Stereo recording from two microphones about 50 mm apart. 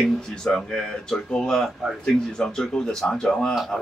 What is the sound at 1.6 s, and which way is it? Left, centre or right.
Speech, centre.